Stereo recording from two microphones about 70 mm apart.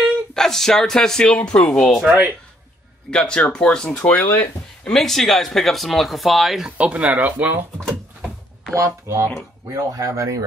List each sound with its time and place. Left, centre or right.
0.3 s speech: centre
2.0 s speech: right
3.1 s speech: centre
4.8 s speech: centre
6.8 s speech: centre
8.7 s speech: right